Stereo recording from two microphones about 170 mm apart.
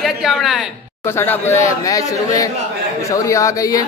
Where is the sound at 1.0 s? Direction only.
15° left (ahead or behind).